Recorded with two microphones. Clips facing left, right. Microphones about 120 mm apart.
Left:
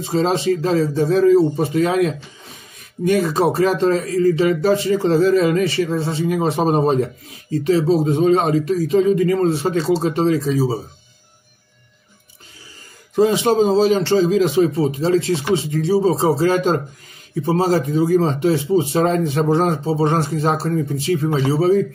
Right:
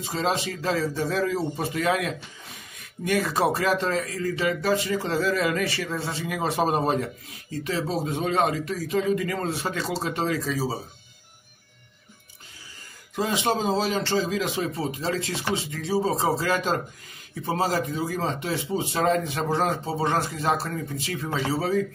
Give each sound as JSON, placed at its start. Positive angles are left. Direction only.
{"t": 0.0, "sound": "speech", "side_deg": 30}
{"t": 3.1, "sound": "speech", "side_deg": 25}
{"t": 13.1, "sound": "speech", "side_deg": 30}